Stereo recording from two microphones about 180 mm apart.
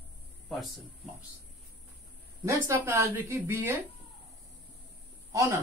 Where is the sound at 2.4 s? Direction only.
15° right (ahead or behind).